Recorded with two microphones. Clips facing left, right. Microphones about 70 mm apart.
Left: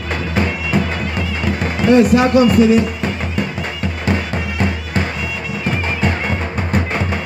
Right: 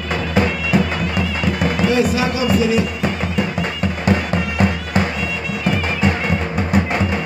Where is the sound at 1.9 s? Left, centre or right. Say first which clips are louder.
Left 7 dB; left.